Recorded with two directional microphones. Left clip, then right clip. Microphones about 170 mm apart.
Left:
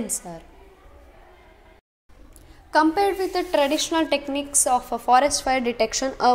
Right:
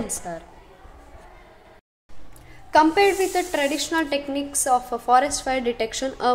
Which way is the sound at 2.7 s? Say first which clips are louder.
Right 3 dB; 15° left (ahead or behind).